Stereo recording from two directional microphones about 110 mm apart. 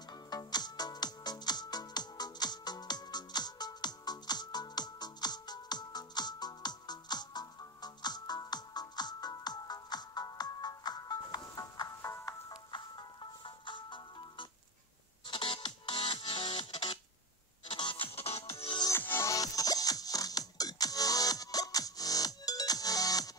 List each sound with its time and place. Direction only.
0.3 s music: 40° left (ahead or behind)
12.4 s music: 45° left (ahead or behind); by 18.8 s 65° left (ahead or behind)
18.9 s music: 25° left (ahead or behind)